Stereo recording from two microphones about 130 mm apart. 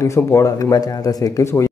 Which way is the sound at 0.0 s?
20° left (ahead or behind).